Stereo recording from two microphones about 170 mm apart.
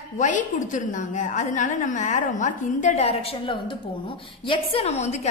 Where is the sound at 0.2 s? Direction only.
45° left (ahead or behind).